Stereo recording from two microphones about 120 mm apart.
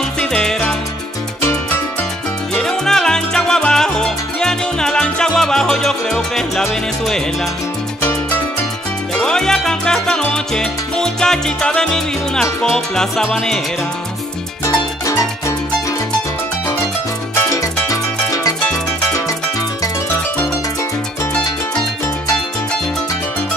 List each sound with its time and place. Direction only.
0.2 s music: 5° left (ahead or behind)
2.5 s music: 5° left (ahead or behind)
8.0 s music: 20° left (ahead or behind)
9.1 s salsa music: 5° left (ahead or behind)
14.6 s music: 25° left (ahead or behind)
17.4 s music: 25° left (ahead or behind)